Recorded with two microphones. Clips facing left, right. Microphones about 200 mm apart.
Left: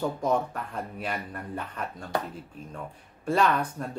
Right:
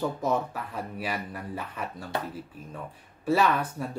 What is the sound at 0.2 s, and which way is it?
Speech, 5° right (ahead or behind).